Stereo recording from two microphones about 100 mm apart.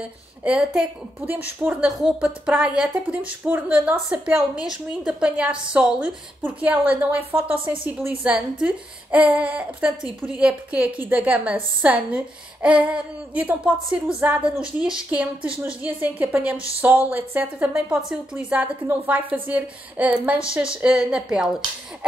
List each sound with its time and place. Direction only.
0.4 s a woman's voice: 10° right (ahead or behind)
1.9 s a woman's voice: 5° right (ahead or behind)